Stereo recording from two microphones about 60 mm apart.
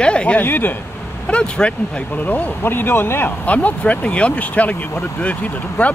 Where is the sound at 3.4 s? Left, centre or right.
Left.